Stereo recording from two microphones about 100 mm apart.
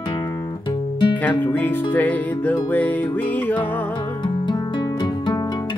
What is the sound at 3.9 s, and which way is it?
Music, 55° left (ahead or behind).